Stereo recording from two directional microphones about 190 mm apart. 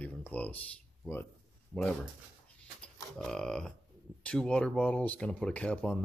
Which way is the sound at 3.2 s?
5° left (ahead or behind).